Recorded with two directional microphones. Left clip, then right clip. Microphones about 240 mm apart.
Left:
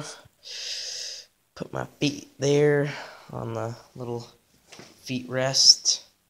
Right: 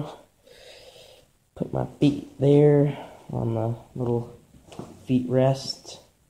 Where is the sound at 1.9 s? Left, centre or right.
Centre.